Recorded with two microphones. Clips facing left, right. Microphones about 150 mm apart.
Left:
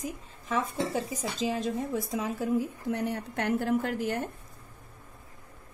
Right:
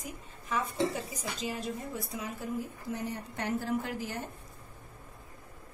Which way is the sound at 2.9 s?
65° left (ahead or behind).